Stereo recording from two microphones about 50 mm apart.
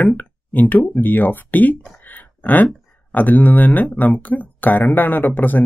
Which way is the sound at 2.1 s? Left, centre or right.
Left.